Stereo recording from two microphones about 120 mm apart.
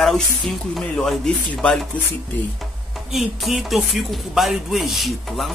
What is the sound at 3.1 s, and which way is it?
Speech, centre (ahead or behind).